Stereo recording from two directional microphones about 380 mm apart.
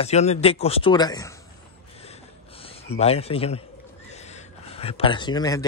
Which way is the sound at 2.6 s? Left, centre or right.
Centre.